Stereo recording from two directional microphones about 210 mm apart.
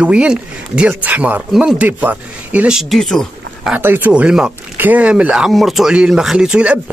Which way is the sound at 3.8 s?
10° right (ahead or behind).